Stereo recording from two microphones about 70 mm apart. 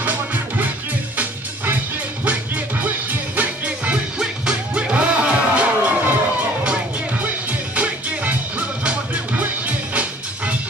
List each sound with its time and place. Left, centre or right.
0.0 s music: right
2.2 s music: right
7.7 s music: centre